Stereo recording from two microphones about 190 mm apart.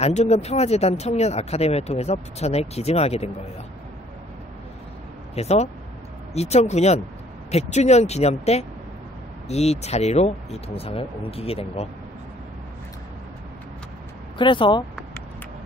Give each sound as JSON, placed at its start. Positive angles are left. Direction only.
{"t": 0.0, "sound": "speech", "side_deg": 35}
{"t": 5.3, "sound": "speech", "side_deg": 35}
{"t": 14.4, "sound": "speech", "side_deg": 25}